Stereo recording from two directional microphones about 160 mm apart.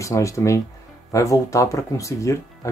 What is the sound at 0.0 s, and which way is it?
Speech, 20° left (ahead or behind).